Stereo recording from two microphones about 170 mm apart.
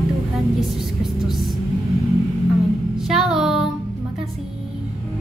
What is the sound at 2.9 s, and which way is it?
Music, centre (ahead or behind).